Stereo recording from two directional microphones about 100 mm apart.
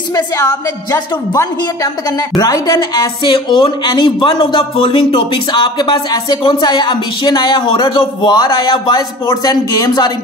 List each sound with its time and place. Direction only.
0.1 s a woman's voice: 35° left (ahead or behind)
3.3 s speech: 60° left (ahead or behind); by 10.1 s 40° left (ahead or behind)